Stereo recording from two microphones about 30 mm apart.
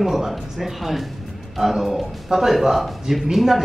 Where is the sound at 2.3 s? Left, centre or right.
Right.